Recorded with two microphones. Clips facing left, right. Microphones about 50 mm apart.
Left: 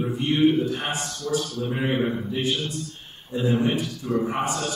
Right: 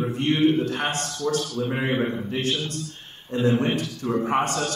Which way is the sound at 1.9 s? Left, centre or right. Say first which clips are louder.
Left 2 dB; centre.